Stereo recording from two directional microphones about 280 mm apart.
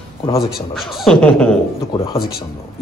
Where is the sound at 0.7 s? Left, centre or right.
Centre.